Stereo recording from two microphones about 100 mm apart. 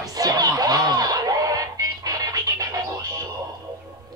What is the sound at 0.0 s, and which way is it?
Music, 40° right (ahead or behind).